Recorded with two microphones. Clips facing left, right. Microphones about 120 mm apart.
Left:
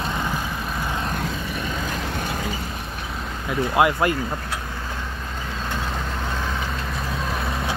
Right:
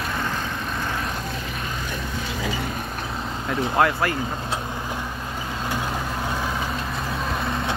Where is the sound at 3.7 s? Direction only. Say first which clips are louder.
Left 2 dB; 15° left (ahead or behind).